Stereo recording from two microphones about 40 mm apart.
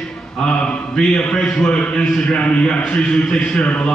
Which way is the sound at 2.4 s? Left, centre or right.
Left.